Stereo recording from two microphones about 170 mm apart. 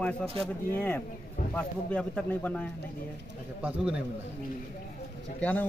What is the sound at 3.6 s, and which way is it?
Speech, 5° right (ahead or behind).